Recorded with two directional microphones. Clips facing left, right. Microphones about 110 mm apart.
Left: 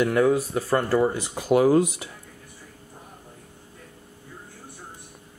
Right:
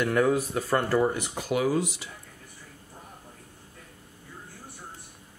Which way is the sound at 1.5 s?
45° left (ahead or behind).